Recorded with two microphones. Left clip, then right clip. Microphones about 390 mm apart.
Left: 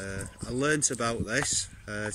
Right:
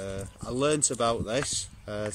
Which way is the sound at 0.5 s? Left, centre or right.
Centre.